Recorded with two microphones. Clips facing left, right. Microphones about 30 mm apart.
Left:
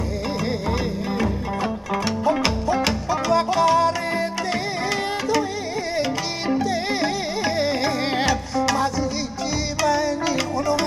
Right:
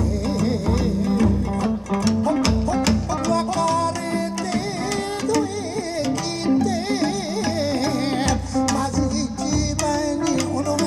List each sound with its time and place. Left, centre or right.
0.4 s music: left
5.9 s music: left